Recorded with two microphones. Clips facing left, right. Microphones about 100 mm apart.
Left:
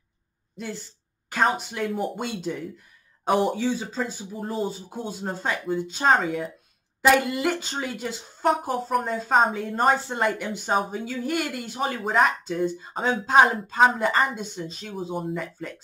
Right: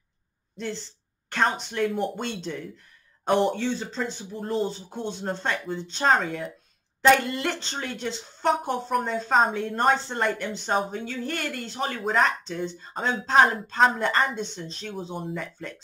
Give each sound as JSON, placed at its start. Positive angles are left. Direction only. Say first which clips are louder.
{"t": 0.6, "sound": "a woman's voice", "louder": "right 2 dB", "side_deg": 5}